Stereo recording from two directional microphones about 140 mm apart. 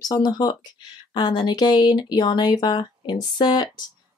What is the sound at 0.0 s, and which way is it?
Speech, 30° left (ahead or behind).